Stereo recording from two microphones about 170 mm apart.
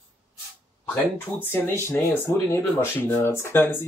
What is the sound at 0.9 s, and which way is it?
Speech, 10° left (ahead or behind).